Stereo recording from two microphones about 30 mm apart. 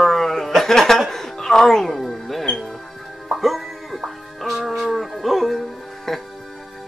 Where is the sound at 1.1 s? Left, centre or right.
Centre.